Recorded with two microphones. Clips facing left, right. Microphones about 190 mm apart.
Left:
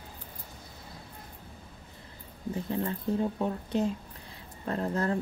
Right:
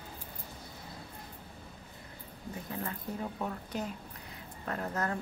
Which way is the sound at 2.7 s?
25° left (ahead or behind).